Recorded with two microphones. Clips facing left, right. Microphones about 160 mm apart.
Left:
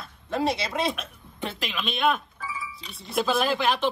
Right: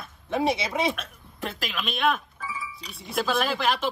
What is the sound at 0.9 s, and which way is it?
Speech, centre (ahead or behind).